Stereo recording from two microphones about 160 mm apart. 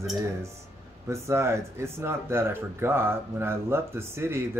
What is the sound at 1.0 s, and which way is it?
Speech, 15° right (ahead or behind).